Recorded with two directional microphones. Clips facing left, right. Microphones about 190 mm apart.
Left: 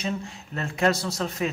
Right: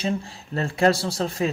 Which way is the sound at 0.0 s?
35° right (ahead or behind).